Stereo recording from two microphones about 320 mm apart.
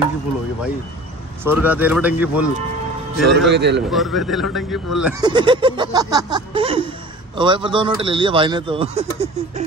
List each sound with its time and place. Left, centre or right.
1.4 s a man's voice: centre
3.3 s a man's voice: right
3.9 s a man's voice: centre
5.2 s a man's voice: centre